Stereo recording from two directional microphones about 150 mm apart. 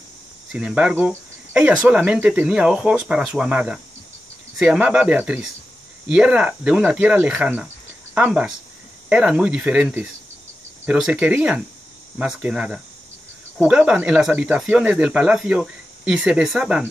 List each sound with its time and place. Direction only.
0.5 s speech: 5° right (ahead or behind)